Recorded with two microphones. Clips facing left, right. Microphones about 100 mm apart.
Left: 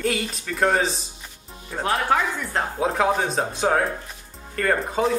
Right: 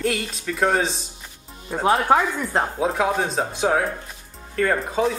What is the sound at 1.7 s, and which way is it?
Speech, 20° right (ahead or behind).